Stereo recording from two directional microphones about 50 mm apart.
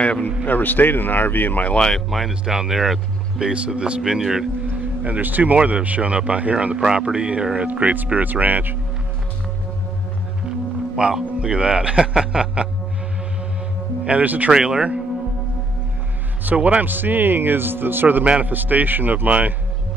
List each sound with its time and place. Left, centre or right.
0.0 s a man's voice: left
0.5 s speech: left
2.0 s speech: centre
3.4 s a man's voice: right
5.0 s speech: right
11.0 s a man's voice: centre
14.0 s speech: right
14.5 s a man's voice: centre
16.4 s speech: right
18.2 s speech: right
18.5 s speech: right